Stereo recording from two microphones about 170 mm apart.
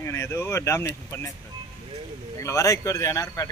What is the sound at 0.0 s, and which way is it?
Speech, 15° left (ahead or behind).